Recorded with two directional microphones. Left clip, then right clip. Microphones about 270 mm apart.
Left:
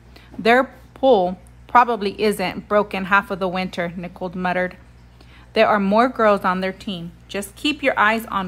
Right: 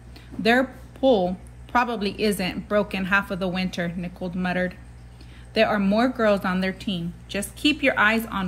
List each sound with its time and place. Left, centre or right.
0.4 s a woman's voice: left